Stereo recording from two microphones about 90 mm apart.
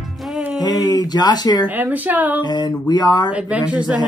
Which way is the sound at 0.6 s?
45° left (ahead or behind).